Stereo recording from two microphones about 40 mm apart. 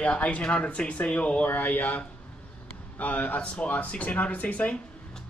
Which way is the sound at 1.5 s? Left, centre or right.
Left.